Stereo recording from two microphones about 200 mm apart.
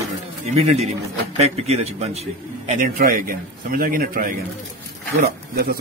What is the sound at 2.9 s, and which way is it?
A man's voice, 45° right (ahead or behind).